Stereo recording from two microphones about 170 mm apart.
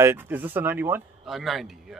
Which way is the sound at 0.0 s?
15° right (ahead or behind).